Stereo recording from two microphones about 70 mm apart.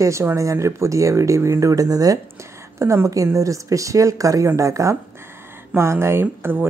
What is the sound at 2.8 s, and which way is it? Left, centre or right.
Speech, right.